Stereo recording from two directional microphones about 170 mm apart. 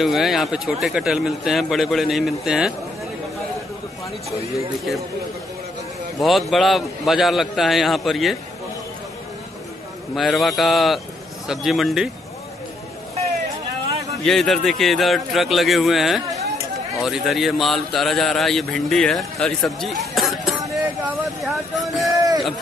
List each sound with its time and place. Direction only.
0.0 s a man's voice: centre (ahead or behind)
6.1 s a man's voice: centre (ahead or behind)
10.1 s a man's voice: centre (ahead or behind)
14.2 s a man's voice: centre (ahead or behind)
22.1 s a sound: 20° right (ahead or behind)